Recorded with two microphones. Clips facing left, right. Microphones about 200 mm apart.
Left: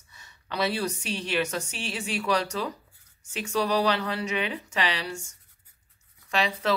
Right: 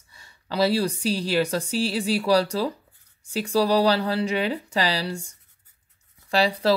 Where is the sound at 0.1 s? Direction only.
30° right (ahead or behind).